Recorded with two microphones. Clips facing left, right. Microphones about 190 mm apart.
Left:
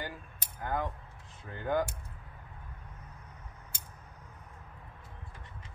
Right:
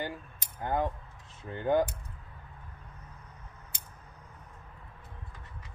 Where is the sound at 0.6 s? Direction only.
25° right (ahead or behind).